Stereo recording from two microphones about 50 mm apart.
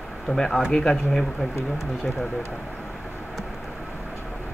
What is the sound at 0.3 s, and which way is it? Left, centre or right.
Speech, centre.